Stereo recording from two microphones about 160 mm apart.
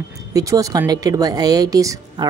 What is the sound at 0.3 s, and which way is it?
Speech, 20° right (ahead or behind).